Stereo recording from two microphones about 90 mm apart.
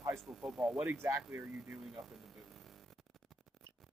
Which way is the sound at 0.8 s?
30° right (ahead or behind).